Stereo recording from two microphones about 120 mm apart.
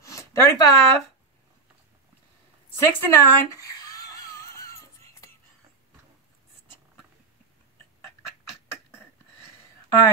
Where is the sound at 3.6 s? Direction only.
30° left (ahead or behind).